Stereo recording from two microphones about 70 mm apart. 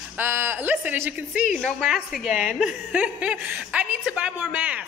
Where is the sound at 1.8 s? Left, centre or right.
Centre.